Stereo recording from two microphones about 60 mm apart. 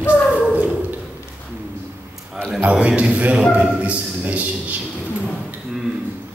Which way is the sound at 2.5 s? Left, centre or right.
Right.